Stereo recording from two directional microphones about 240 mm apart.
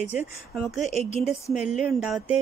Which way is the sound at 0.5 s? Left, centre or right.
Centre.